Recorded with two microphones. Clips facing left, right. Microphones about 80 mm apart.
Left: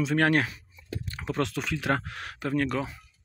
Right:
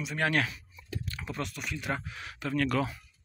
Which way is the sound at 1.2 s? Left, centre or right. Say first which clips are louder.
Left 9 dB; left.